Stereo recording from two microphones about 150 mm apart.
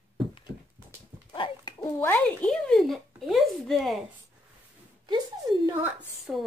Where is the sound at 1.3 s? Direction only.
30° left (ahead or behind).